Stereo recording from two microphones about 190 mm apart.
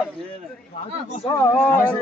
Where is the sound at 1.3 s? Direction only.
10° left (ahead or behind).